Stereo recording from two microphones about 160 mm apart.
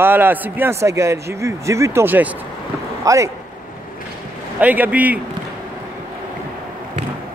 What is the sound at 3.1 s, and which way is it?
Speech, 20° right (ahead or behind).